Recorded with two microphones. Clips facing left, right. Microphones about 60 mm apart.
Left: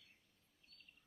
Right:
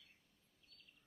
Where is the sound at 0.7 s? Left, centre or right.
Left.